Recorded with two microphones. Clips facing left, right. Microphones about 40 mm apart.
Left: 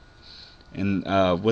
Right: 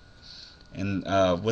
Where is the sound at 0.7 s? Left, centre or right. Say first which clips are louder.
Left 3 dB; left.